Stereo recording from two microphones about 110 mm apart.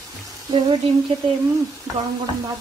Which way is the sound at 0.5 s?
40° right (ahead or behind).